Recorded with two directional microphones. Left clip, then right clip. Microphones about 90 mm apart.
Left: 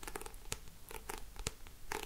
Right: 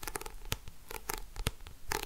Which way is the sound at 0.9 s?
30° right (ahead or behind).